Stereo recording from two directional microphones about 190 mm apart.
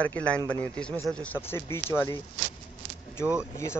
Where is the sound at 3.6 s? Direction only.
15° left (ahead or behind).